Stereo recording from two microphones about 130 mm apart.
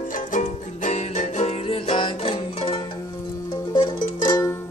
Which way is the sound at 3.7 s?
35° left (ahead or behind).